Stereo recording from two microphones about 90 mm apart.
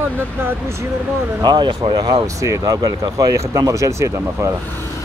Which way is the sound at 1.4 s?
55° right (ahead or behind).